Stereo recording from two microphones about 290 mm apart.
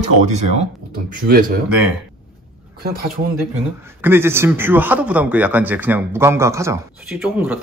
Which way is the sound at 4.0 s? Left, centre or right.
Centre.